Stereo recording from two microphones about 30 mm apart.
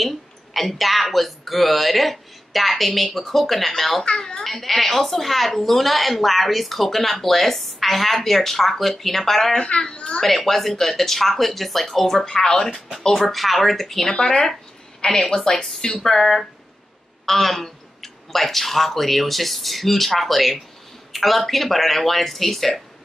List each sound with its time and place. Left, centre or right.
0.0 s speech: centre
9.6 s a child's voice: left
10.2 s speech: centre
13.3 s speech: centre
14.1 s a child's voice: left
15.3 s speech: left
16.0 s speech: centre